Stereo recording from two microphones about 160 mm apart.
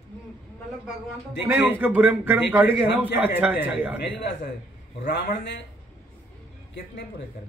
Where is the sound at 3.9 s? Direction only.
90° left.